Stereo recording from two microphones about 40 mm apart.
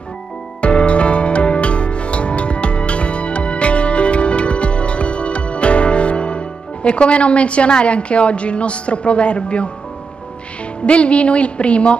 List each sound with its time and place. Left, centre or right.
0.6 s music: left
10.9 s a woman's voice: left